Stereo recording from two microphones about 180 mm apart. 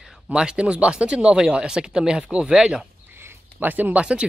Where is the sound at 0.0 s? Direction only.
5° right (ahead or behind).